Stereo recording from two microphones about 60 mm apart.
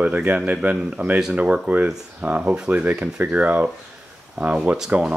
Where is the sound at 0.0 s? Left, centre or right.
Right.